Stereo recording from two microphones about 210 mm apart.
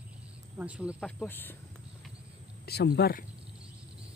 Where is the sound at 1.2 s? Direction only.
10° left (ahead or behind).